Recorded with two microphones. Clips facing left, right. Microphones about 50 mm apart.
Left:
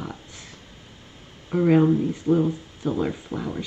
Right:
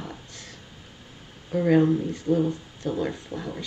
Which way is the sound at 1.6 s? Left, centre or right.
Centre.